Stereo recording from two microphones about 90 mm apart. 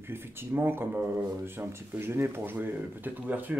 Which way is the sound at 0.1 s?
25° right (ahead or behind).